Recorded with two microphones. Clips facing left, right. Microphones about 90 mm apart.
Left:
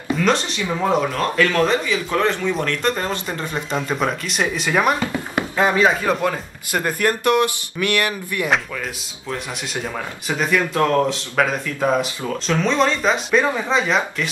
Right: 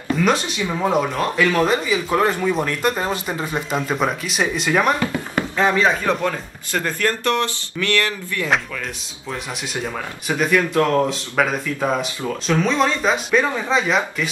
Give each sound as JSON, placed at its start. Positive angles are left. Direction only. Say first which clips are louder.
{"t": 0.2, "sound": "speech", "louder": "even", "side_deg": -5}
{"t": 5.3, "sound": "speech", "louder": "even", "side_deg": 10}
{"t": 10.2, "sound": "speech", "louder": "right 2 dB", "side_deg": 0}